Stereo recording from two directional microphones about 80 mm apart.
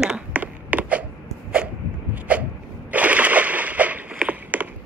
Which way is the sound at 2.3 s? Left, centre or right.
Centre.